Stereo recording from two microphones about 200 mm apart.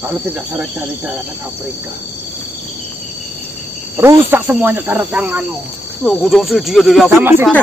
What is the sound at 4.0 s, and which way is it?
Speech, 10° right (ahead or behind).